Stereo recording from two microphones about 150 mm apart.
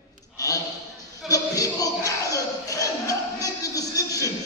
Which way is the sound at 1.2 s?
25° left (ahead or behind).